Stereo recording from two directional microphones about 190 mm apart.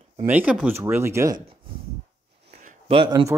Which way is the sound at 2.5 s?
35° right (ahead or behind).